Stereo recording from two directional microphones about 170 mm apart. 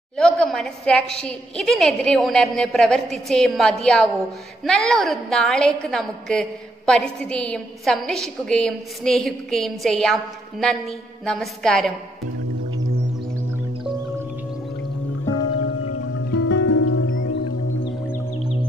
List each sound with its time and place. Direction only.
0.2 s a woman's voice: centre (ahead or behind)
16.3 s music: 90° left